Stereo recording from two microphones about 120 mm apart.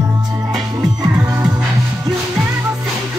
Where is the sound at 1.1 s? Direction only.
15° right (ahead or behind).